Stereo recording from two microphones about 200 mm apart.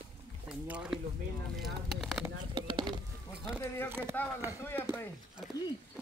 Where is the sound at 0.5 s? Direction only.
5° right (ahead or behind).